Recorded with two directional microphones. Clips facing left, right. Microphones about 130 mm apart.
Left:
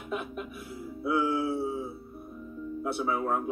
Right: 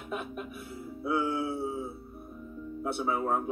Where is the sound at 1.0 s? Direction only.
30° right (ahead or behind).